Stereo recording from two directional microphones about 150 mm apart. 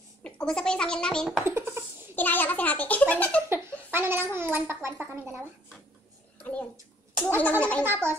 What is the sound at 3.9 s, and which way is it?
Babbling, 15° right (ahead or behind).